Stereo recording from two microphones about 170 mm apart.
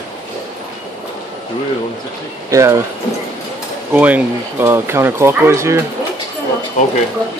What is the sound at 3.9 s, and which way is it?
Speech, 10° right (ahead or behind).